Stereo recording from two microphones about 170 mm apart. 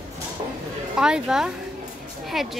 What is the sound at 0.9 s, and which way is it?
A woman's voice, 5° right (ahead or behind).